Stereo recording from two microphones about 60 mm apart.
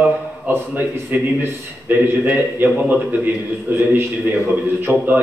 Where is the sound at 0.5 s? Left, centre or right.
Right.